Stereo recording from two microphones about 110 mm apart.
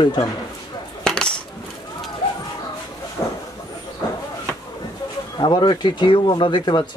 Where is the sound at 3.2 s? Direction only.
30° left (ahead or behind).